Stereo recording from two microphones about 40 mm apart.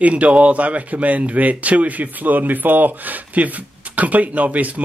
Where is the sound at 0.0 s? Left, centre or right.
Right.